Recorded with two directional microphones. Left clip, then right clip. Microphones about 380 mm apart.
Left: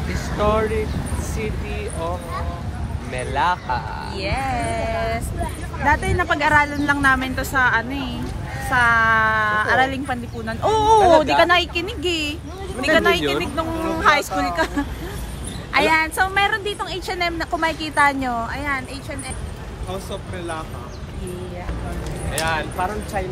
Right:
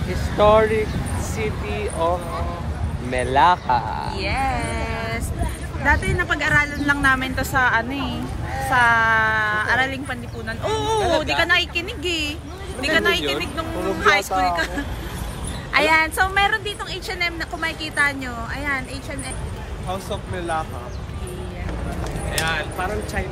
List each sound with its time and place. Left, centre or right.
0.4 s speech: right
4.2 s a woman's voice: centre
5.9 s a woman's voice: centre
15.7 s a woman's voice: centre
19.9 s speech: centre
22.4 s speech: centre